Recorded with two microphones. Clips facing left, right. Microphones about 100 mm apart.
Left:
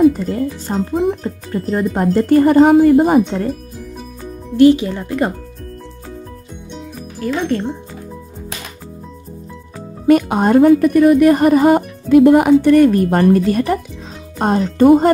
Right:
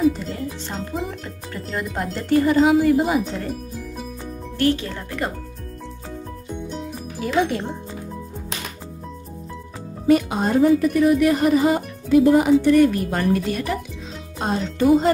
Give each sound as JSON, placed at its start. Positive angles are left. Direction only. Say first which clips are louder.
{"t": 0.0, "sound": "speech", "louder": "left 8 dB", "side_deg": 45}
{"t": 1.2, "sound": "speech", "louder": "left 10 dB", "side_deg": 30}
{"t": 2.1, "sound": "speech", "louder": "left 7 dB", "side_deg": 45}
{"t": 4.6, "sound": "speech", "louder": "left 11 dB", "side_deg": 15}
{"t": 6.7, "sound": "music", "louder": "even", "side_deg": -5}
{"t": 10.0, "sound": "a woman's voice", "louder": "left 6 dB", "side_deg": 60}